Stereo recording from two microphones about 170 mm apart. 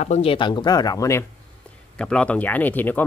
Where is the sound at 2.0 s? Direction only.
5° left (ahead or behind).